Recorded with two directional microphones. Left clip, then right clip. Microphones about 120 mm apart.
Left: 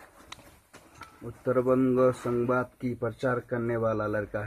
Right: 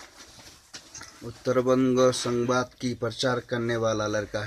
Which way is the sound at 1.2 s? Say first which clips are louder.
Right 2 dB; 20° right (ahead or behind).